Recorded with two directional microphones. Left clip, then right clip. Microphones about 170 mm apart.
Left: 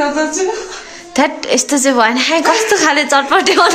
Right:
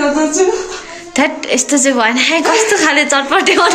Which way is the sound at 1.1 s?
30° left (ahead or behind).